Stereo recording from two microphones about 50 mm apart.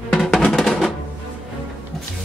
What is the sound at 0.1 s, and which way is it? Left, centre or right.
Music, centre.